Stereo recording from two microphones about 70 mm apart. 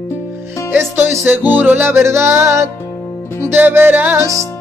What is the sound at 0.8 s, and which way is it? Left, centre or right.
Music, right.